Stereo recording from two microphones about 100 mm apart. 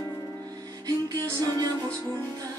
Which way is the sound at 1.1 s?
40° right (ahead or behind).